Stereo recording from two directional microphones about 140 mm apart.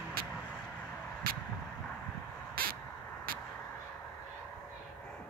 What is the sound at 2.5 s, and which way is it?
Crow, 90° right.